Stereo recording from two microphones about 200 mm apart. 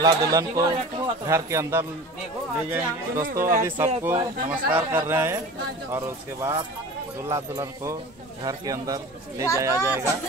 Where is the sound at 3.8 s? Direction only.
10° right (ahead or behind).